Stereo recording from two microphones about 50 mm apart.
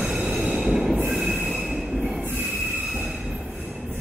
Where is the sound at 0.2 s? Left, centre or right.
Right.